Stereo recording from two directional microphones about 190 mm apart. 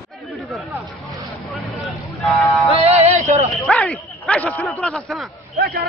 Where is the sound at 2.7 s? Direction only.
35° right (ahead or behind).